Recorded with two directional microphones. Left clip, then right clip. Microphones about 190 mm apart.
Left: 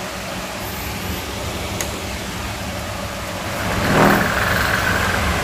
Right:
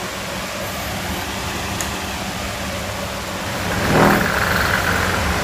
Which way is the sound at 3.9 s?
Centre (ahead or behind).